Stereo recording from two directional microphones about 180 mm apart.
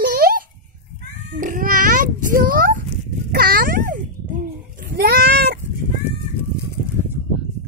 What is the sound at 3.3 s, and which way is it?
Babbling, 55° right (ahead or behind).